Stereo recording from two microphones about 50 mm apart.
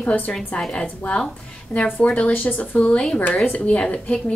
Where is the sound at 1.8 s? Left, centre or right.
Left.